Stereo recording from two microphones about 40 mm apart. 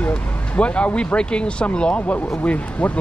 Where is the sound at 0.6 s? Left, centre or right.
Left.